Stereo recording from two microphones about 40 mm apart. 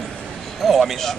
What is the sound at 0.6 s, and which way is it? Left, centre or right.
Speech, centre.